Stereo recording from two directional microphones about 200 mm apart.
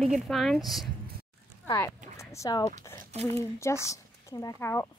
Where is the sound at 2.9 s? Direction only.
30° right (ahead or behind).